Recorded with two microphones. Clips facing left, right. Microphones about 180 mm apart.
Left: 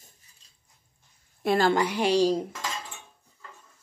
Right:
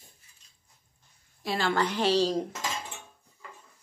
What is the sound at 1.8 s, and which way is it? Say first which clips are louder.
Speech: left 2 dB; 10° left (ahead or behind).